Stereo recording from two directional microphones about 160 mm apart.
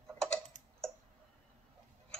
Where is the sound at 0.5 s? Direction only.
50° right (ahead or behind).